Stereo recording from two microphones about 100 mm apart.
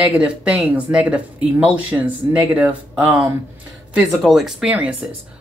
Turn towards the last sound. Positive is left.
turn(degrees=-10)  # may be behind; listen again after turning